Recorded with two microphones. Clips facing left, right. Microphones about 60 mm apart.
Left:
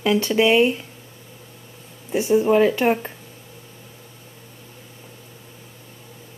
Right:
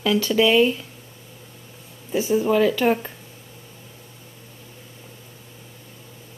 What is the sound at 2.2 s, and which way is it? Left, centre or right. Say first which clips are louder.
Speech: left 3 dB; left.